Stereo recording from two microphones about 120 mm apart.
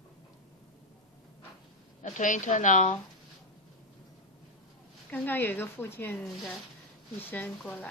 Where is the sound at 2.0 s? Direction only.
90° left.